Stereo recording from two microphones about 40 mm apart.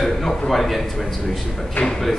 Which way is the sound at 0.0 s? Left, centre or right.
Centre.